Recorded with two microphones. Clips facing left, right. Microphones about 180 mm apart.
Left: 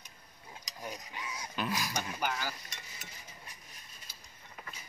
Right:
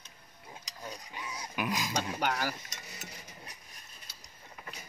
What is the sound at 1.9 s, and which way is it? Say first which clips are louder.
Speech: right 3 dB; 65° right (ahead or behind).